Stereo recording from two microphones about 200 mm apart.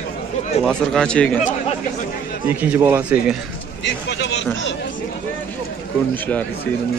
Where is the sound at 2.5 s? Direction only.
10° right (ahead or behind).